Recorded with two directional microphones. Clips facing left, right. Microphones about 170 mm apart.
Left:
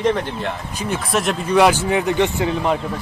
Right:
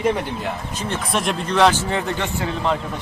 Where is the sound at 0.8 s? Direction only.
5° left (ahead or behind).